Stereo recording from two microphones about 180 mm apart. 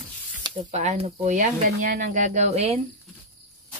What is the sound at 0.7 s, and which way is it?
Speech, 40° right (ahead or behind).